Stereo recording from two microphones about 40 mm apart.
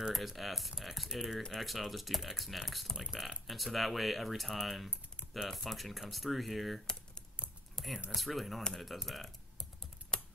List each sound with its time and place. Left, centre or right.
0.1 s speech: centre
7.8 s typing: centre
8.1 s speech: centre
10.1 s typing: centre